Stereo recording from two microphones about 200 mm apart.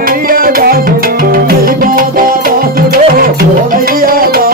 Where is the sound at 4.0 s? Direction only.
45° right (ahead or behind).